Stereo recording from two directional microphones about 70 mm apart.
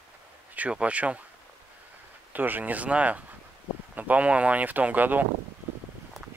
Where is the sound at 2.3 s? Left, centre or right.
Right.